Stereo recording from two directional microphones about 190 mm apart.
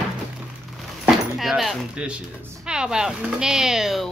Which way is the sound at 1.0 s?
Centre (ahead or behind).